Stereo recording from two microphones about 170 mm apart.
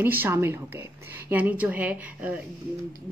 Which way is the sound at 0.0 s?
10° right (ahead or behind).